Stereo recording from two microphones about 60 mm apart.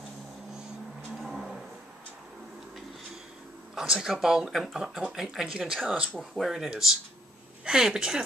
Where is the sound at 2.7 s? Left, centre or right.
Centre.